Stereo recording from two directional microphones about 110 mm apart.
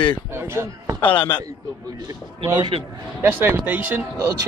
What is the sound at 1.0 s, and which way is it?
Speech, 50° left (ahead or behind).